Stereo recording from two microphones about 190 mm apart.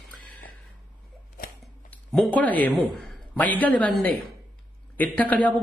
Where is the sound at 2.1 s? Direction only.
5° left (ahead or behind).